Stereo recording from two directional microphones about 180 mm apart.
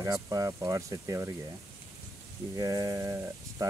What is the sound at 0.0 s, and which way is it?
Speech, 20° right (ahead or behind).